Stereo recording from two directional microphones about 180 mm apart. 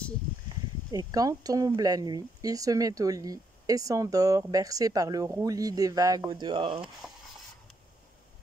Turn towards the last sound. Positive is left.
turn(degrees=-5)  # may be behind; listen again after turning